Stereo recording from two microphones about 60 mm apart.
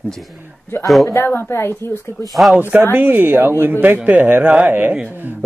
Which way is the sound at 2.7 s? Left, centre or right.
Right.